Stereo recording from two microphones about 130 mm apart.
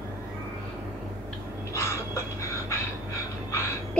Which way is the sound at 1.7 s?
20° left (ahead or behind).